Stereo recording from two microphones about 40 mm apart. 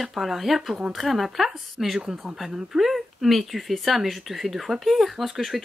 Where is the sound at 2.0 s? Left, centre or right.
Centre.